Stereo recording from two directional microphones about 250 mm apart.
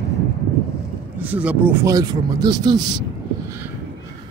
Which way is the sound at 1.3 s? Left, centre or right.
Centre.